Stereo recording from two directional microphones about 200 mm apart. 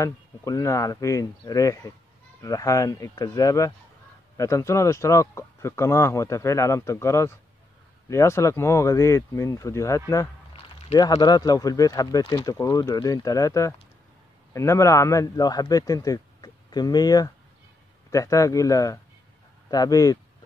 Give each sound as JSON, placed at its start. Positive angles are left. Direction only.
{"t": 0.0, "sound": "a man's voice", "side_deg": 15}